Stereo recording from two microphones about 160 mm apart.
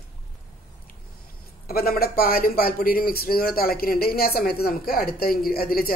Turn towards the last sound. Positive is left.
turn(degrees=65)  # may be behind; listen again after turning